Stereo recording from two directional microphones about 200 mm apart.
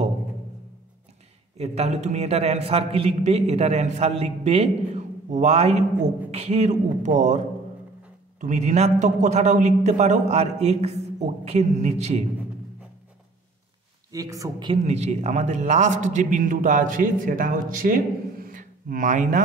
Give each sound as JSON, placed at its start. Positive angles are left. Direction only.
{"t": 1.6, "sound": "a man's voice", "side_deg": -35}
{"t": 14.1, "sound": "a man's voice", "side_deg": -15}
{"t": 14.9, "sound": "a man's voice", "side_deg": -35}